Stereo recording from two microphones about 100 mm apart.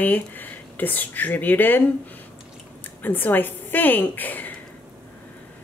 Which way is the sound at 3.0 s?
20° left (ahead or behind).